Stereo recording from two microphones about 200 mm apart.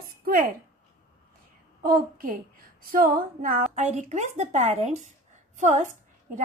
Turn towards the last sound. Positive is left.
turn(degrees=-35)  # may be behind; listen again after turning